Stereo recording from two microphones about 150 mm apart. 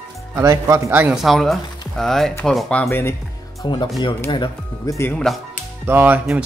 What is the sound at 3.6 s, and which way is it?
Speech, 30° left (ahead or behind).